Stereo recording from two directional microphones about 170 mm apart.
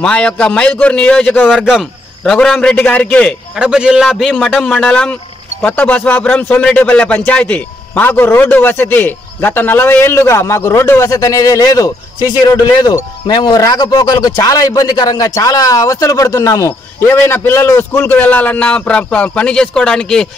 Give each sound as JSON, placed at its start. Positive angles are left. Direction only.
{"t": 0.0, "sound": "a man's voice", "side_deg": 5}
{"t": 1.5, "sound": "a man's voice", "side_deg": -5}
{"t": 3.5, "sound": "a man's voice", "side_deg": -5}